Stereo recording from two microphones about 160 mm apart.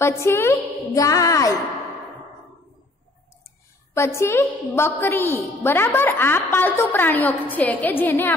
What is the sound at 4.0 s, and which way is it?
A woman's voice, 15° left (ahead or behind).